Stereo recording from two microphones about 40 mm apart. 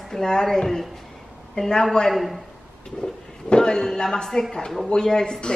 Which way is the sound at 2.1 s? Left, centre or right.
Centre.